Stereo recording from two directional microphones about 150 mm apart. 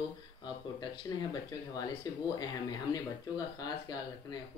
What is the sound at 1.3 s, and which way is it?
Speech, 25° left (ahead or behind).